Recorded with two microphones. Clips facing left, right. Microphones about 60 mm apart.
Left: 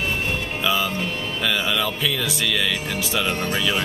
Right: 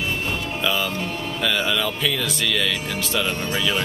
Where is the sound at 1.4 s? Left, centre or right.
Centre.